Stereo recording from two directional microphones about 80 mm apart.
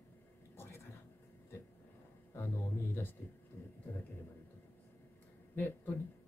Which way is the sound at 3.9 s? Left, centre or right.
Left.